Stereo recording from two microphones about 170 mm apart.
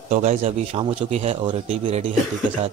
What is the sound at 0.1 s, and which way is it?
A man's voice, 40° right (ahead or behind).